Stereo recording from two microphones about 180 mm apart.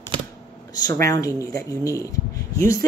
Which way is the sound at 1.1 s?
20° left (ahead or behind).